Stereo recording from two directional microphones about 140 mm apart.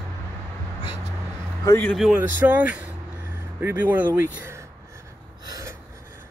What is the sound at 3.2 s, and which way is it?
Vehicle, 15° right (ahead or behind).